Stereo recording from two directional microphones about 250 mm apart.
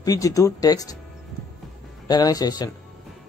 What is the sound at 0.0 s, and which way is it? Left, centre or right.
Speech, centre.